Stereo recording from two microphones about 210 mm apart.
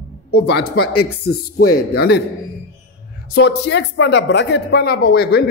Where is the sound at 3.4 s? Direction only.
55° left (ahead or behind).